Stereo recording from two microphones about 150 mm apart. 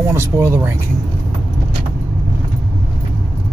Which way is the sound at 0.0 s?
15° right (ahead or behind).